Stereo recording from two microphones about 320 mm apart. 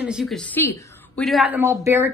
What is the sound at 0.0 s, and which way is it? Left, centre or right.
A woman's voice, centre.